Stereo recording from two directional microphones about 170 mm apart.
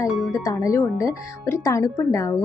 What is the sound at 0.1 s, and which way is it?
Speech, centre (ahead or behind).